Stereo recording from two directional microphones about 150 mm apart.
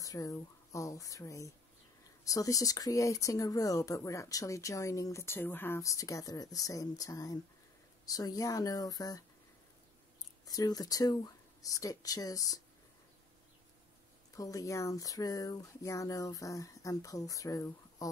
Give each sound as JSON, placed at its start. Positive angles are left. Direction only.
{"t": 0.0, "sound": "speech", "side_deg": 20}
{"t": 10.4, "sound": "speech", "side_deg": 25}
{"t": 14.3, "sound": "speech", "side_deg": 25}